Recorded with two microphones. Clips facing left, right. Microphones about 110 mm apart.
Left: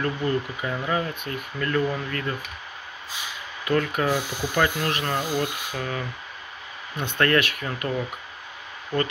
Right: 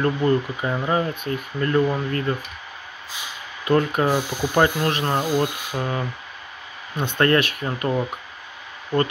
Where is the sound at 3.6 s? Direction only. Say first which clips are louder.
Right 4 dB; 30° right (ahead or behind).